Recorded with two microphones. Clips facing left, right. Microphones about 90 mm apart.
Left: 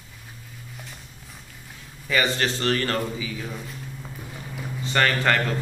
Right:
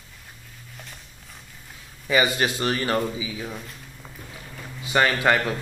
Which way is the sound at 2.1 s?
15° right (ahead or behind).